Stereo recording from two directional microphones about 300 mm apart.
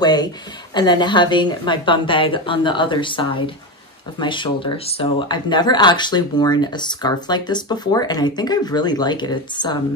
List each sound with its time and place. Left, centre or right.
0.0 s speech: centre